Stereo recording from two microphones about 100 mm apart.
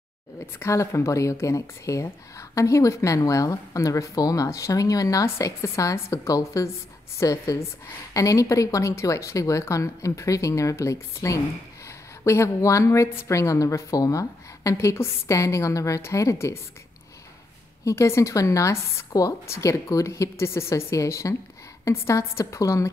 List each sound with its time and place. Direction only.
0.6 s speech: 30° left (ahead or behind)
17.8 s speech: 30° left (ahead or behind)